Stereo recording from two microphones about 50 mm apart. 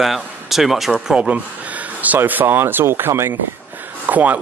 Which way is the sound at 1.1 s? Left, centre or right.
Right.